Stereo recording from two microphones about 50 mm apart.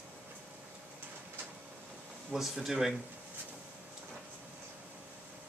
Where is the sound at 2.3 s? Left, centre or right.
Centre.